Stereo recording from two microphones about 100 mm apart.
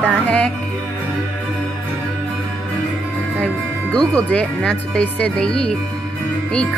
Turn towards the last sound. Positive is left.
turn(degrees=10)  # may be behind; listen again after turning